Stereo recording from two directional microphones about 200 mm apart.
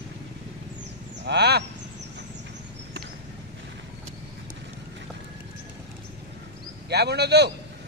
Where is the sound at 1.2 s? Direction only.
55° right (ahead or behind).